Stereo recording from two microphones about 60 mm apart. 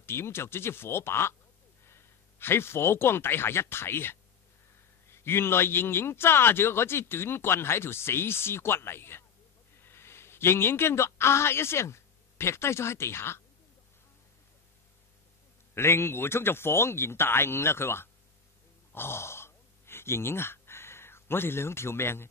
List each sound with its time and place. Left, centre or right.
0.0 s a man's voice: left
15.7 s speech: left
18.9 s sigh: left